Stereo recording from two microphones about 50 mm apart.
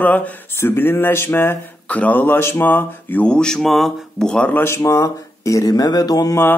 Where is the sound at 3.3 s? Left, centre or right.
Centre.